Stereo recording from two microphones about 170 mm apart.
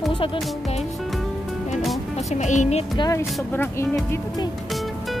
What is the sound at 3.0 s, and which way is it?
Speech, 15° left (ahead or behind).